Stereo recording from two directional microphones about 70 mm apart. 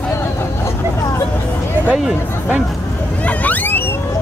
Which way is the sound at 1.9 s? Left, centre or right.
Centre.